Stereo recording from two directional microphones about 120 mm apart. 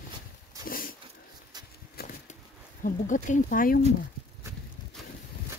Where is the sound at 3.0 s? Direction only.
90° left.